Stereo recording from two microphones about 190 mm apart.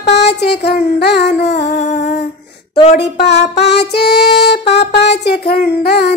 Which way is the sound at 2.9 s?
65° left (ahead or behind).